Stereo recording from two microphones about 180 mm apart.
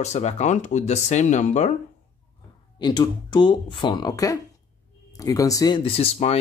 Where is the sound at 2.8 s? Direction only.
25° left (ahead or behind).